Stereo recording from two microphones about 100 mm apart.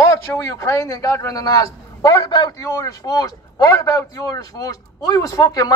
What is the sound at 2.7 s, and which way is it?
A man's voice, 35° left (ahead or behind).